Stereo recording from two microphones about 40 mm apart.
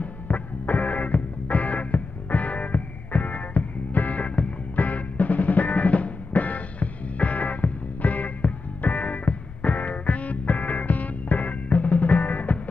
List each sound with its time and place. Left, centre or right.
0.0 s music: left